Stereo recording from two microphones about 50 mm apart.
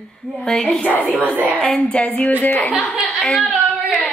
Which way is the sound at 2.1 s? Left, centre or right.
Left.